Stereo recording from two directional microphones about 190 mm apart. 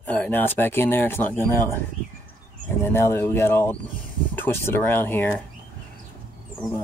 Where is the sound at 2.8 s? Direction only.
15° left (ahead or behind).